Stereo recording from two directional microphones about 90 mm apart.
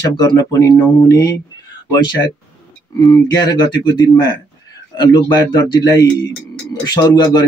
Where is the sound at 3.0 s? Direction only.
50° left (ahead or behind).